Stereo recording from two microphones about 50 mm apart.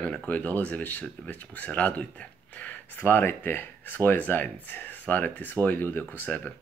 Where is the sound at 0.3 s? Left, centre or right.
Left.